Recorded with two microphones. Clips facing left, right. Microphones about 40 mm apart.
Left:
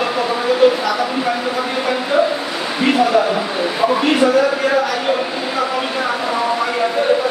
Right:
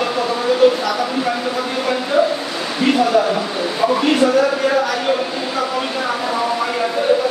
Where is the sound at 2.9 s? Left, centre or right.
Centre.